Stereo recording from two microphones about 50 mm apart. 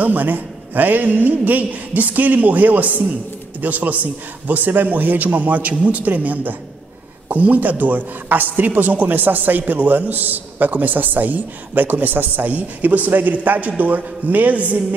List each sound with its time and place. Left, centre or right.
0.0 s speech: right